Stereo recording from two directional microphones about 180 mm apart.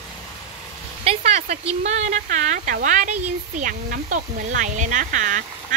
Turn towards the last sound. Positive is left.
turn(degrees=-45)  # may be behind; listen again after turning